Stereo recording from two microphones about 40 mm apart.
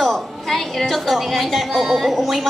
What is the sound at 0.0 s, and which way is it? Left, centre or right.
A woman's voice, centre.